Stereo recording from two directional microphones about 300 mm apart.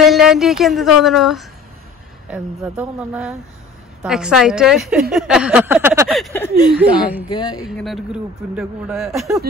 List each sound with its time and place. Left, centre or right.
0.0 s speech: centre
7.2 s speech: centre
7.6 s speech: centre